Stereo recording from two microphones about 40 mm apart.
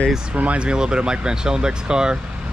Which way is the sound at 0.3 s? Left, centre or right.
Right.